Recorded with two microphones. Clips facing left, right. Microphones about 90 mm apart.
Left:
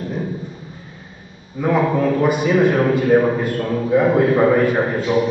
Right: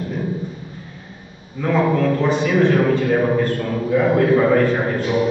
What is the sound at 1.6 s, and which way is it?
A man's voice, 10° left (ahead or behind).